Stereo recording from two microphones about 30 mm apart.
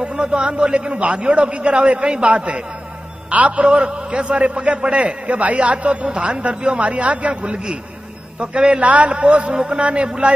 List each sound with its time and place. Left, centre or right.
0.1 s a man's voice: right
3.3 s a man's voice: right
3.8 s a man's voice: right
8.5 s a man's voice: right
8.8 s a man's voice: right
9.1 s a man's voice: right